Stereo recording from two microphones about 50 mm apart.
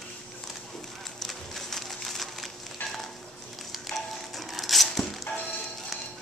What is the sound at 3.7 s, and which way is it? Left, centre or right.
Music, centre.